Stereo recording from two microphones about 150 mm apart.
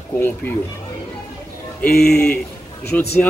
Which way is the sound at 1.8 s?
90° left.